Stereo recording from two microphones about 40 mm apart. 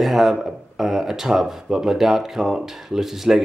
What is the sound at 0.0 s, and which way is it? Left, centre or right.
Speech, centre.